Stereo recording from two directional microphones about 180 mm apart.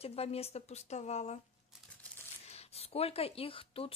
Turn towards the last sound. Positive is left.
turn(degrees=30)  # may be behind; listen again after turning